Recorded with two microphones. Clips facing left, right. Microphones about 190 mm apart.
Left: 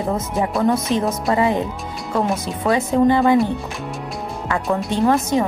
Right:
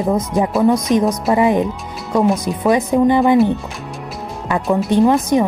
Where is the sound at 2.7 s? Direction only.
15° right (ahead or behind).